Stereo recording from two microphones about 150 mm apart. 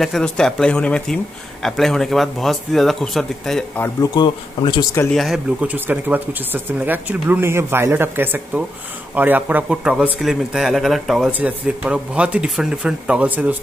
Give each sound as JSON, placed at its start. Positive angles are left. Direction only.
{"t": 0.0, "sound": "speech", "side_deg": 0}
{"t": 3.7, "sound": "speech", "side_deg": 15}
{"t": 4.1, "sound": "speech", "side_deg": 30}
{"t": 5.1, "sound": "speech", "side_deg": 0}